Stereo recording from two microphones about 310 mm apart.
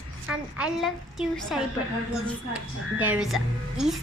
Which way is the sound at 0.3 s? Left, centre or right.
Centre.